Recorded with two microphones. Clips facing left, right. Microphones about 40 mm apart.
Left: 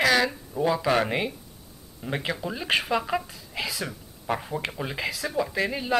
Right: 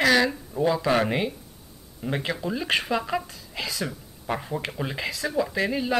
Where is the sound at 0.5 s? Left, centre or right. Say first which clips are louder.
Even; centre.